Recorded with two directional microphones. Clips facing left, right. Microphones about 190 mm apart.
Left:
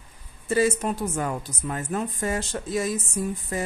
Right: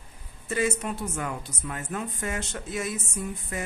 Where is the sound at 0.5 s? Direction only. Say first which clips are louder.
Left 5 dB; 35° left (ahead or behind).